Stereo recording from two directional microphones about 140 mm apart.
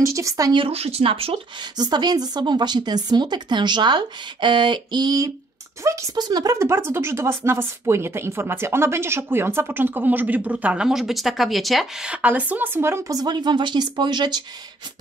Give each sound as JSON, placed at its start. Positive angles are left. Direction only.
{"t": 0.0, "sound": "speech", "side_deg": -20}
{"t": 0.6, "sound": "speech", "side_deg": -45}
{"t": 1.8, "sound": "a woman's voice", "side_deg": -30}